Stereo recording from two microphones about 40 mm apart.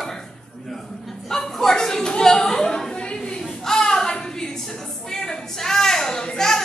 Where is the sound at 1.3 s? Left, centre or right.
Centre.